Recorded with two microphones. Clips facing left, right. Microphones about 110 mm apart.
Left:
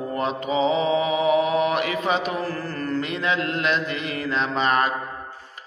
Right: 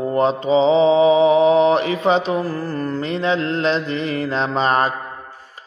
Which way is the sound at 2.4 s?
15° right (ahead or behind).